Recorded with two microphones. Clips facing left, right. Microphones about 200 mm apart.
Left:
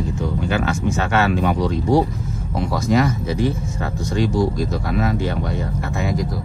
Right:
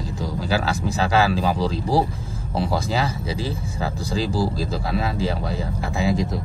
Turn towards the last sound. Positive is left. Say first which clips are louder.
# right 1 dB
turn(degrees=-30)  # may be behind; listen again after turning